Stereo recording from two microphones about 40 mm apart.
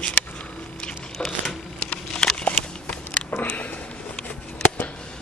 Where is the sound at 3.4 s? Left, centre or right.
Left.